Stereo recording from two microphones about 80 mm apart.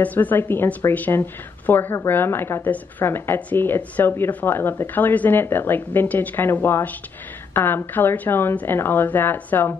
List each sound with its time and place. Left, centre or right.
0.0 s speech: left